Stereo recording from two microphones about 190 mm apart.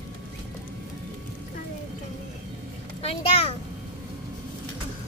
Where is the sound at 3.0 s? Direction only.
30° left (ahead or behind).